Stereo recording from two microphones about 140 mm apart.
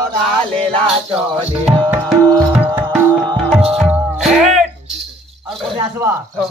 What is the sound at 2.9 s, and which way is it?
Music, 5° left (ahead or behind).